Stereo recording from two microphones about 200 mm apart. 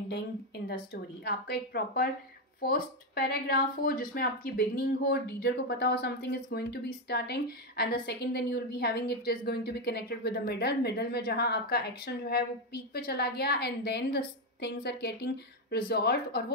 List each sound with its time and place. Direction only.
1.2 s speech: 55° left (ahead or behind)